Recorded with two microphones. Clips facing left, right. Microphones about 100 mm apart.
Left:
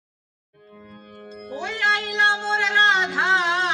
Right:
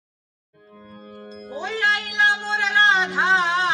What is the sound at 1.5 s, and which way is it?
Music, 20° right (ahead or behind).